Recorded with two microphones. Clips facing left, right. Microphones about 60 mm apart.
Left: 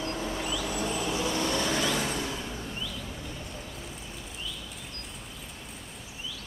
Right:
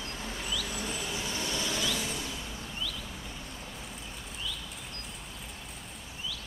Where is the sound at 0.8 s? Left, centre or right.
Left.